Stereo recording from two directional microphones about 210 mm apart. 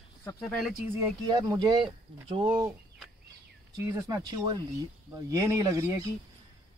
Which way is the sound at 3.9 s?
15° right (ahead or behind).